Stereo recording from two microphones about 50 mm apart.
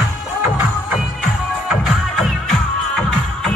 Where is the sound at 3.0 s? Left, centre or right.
Centre.